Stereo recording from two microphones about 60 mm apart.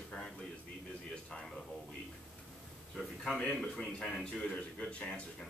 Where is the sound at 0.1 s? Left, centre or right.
Centre.